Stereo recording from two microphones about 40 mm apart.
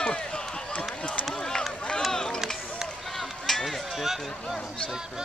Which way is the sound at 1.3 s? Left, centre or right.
Centre.